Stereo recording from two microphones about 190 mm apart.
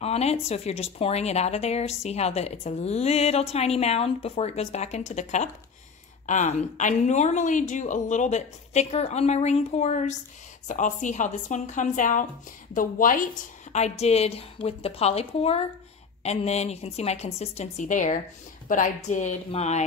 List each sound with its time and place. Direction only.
0.0 s speech: 35° left (ahead or behind)